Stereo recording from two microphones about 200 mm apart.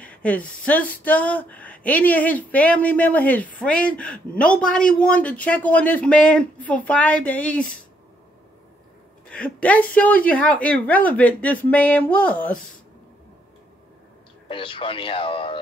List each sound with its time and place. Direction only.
0.0 s a sound: 5° left (ahead or behind)
0.7 s speech: 5° left (ahead or behind)
9.3 s speech: 5° left (ahead or behind)
14.5 s speech: 25° left (ahead or behind)